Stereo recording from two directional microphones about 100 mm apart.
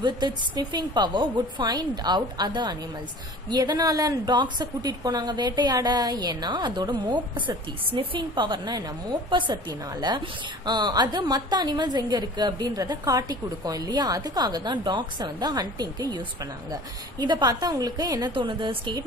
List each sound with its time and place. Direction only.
0.0 s a woman's voice: 50° right (ahead or behind)
7.4 s a woman's voice: 60° right (ahead or behind); by 18.3 s 40° right (ahead or behind)
18.3 s a woman's voice: 55° right (ahead or behind)